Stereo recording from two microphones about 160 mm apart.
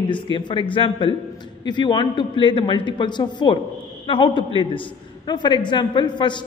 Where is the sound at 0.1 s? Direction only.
30° left (ahead or behind).